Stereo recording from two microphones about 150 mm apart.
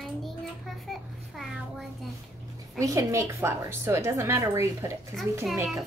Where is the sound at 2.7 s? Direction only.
20° right (ahead or behind).